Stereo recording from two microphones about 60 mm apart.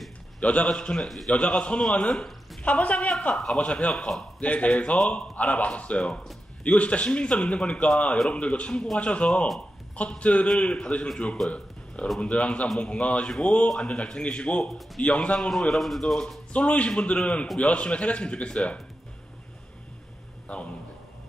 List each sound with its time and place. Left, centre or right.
0.4 s a man's voice: left
1.0 s speech: centre
1.3 s a man's voice: centre
1.8 s a man's voice: centre
2.6 s a man's voice: left
3.3 s a man's voice: centre
4.4 s a man's voice: left
11.4 s speech: centre
12.2 s a man's voice: centre
16.5 s a man's voice: left
20.5 s a man's voice: centre